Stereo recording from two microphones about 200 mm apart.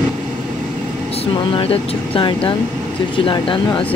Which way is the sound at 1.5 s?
25° left (ahead or behind).